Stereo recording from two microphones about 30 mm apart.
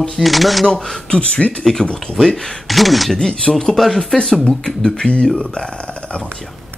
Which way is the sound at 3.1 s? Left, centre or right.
Left.